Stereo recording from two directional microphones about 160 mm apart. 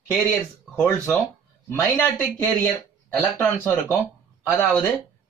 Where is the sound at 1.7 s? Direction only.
15° left (ahead or behind).